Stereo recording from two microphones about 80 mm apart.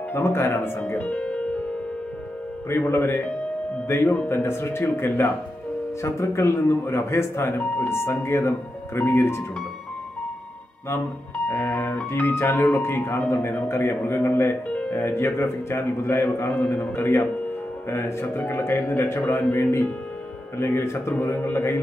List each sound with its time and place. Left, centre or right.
0.1 s speech: left
2.7 s a man's voice: left
11.3 s a man's voice: left